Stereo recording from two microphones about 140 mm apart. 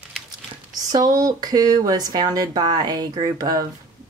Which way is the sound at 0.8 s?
30° right (ahead or behind).